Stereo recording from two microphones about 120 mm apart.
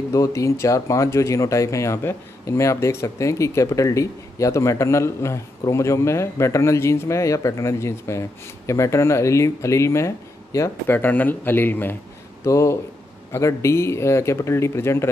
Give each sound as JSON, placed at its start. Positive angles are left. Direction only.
{"t": 0.1, "sound": "speech", "side_deg": 25}